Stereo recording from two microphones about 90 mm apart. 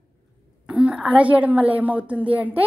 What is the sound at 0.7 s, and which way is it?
A woman's voice, 10° right (ahead or behind).